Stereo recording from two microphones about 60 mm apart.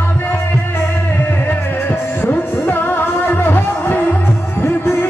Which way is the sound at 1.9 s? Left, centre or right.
Left.